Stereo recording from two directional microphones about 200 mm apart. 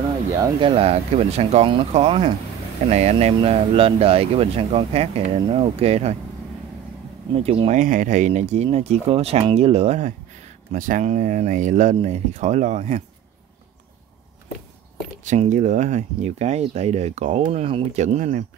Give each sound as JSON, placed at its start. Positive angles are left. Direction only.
{"t": 0.4, "sound": "speech", "side_deg": -25}
{"t": 7.3, "sound": "speech", "side_deg": -30}
{"t": 15.2, "sound": "speech", "side_deg": -35}